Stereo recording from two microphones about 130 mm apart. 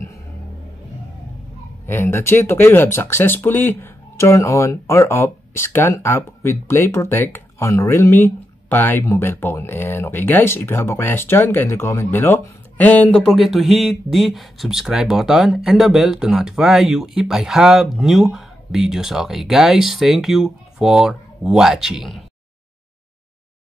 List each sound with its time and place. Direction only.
1.9 s speech: 20° left (ahead or behind); by 22.2 s 5° right (ahead or behind)